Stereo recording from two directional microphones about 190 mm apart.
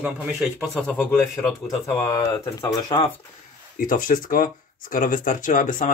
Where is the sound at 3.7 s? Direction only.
45° left (ahead or behind).